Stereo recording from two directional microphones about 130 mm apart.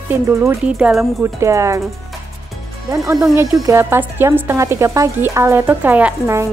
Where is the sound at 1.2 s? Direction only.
20° right (ahead or behind).